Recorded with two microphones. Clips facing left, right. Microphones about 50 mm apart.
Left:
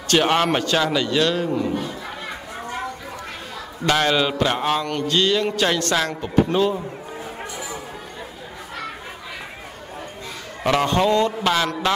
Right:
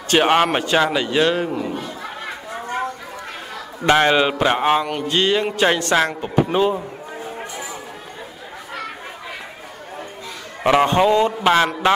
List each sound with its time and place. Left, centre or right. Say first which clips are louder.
0.1 s speech: right 2 dB; centre
3.8 s speech: right 4 dB; right
10.6 s speech: right 4 dB; right